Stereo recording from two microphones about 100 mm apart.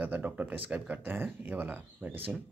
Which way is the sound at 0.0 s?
15° right (ahead or behind).